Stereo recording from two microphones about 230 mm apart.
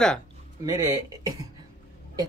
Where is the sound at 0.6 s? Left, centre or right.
Centre.